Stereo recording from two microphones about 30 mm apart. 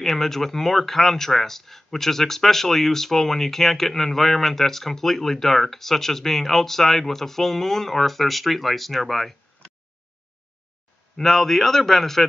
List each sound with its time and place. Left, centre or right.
0.0 s speech: centre
9.6 s a sound: left
11.1 s speech: centre